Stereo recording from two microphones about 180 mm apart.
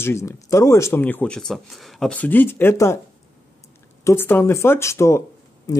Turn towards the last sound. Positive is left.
turn(degrees=20)  # may be behind; listen again after turning